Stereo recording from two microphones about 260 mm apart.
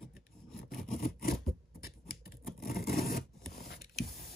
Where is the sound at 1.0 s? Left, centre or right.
Left.